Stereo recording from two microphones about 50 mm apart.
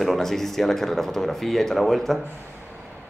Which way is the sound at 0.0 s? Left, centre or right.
Centre.